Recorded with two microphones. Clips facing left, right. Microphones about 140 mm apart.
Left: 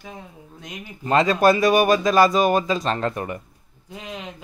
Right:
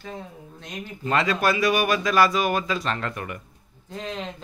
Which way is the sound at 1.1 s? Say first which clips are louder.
Left 6 dB; 35° left (ahead or behind).